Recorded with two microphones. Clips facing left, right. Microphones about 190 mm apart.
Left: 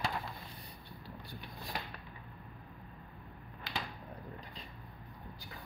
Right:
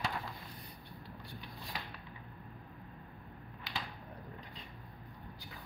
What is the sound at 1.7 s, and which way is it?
Mechanisms, 55° left (ahead or behind).